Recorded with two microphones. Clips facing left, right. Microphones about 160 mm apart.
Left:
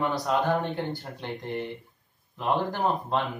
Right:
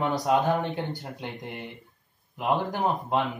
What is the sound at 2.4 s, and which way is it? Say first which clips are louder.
Speech: even; 10° right (ahead or behind).